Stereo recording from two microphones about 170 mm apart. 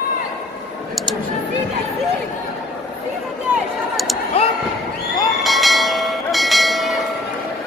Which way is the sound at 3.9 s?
Centre (ahead or behind).